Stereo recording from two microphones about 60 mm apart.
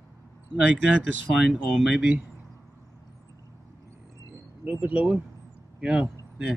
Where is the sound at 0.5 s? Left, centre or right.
Centre.